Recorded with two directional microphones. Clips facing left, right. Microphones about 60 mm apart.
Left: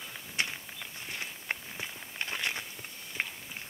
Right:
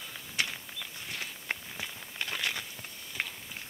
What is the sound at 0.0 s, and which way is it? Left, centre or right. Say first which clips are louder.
Walk: even; centre.